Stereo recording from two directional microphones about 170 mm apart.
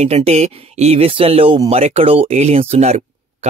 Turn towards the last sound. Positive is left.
turn(degrees=-40)  # may be behind; listen again after turning